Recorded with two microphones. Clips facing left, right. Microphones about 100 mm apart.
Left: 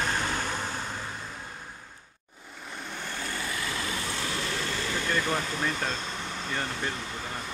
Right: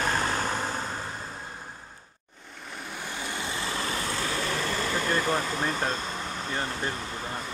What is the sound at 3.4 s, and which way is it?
Vehicle, 30° right (ahead or behind).